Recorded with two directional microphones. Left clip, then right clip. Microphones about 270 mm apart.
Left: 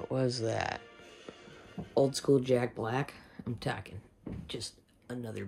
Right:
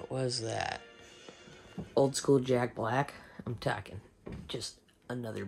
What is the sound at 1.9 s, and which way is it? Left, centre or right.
Speech, centre.